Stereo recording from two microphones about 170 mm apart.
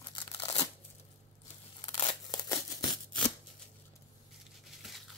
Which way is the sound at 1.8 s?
30° left (ahead or behind).